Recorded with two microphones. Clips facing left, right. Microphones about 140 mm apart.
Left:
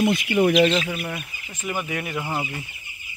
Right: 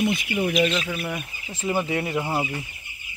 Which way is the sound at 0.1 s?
55° left (ahead or behind).